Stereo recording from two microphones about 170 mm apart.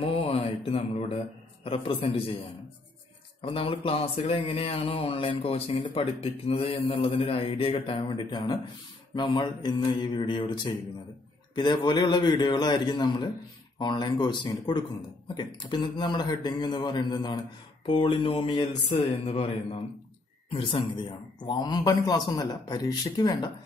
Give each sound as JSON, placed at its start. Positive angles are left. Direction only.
{"t": 0.0, "sound": "mantra", "side_deg": 35}
{"t": 1.6, "sound": "speech", "side_deg": 35}
{"t": 3.4, "sound": "a man's voice", "side_deg": 30}
{"t": 18.9, "sound": "a man's voice", "side_deg": 40}